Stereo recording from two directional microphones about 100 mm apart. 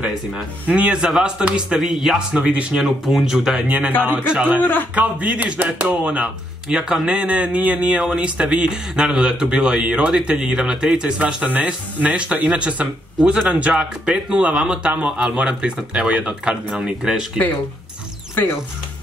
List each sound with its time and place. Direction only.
0.7 s speech: 10° right (ahead or behind)
4.6 s a man's voice: 20° left (ahead or behind)
4.9 s speech: 15° right (ahead or behind)
18.3 s speech: 20° left (ahead or behind)